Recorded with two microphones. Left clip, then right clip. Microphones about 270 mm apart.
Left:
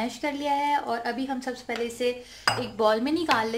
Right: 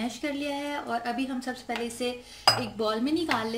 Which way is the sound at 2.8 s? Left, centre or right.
Left.